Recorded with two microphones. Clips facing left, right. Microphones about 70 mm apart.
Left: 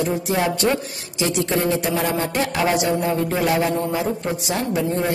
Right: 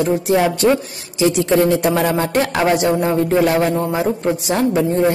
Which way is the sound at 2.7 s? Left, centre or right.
Right.